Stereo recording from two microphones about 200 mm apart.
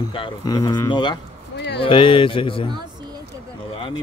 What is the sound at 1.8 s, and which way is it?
Speech, 25° left (ahead or behind).